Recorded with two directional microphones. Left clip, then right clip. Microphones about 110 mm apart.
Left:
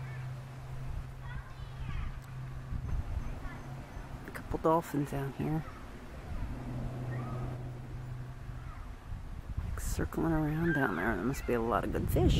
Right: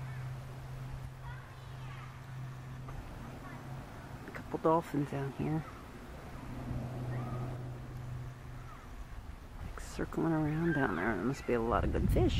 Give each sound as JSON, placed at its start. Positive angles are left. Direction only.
{"t": 4.3, "sound": "speech", "side_deg": 5}
{"t": 9.8, "sound": "speech", "side_deg": 5}